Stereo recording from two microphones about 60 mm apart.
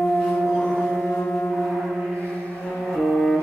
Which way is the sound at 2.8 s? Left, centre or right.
Centre.